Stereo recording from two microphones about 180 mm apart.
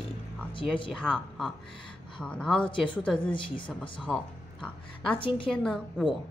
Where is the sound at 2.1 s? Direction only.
5° left (ahead or behind).